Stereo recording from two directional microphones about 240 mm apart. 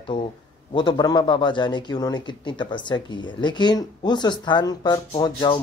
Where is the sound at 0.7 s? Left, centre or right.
Centre.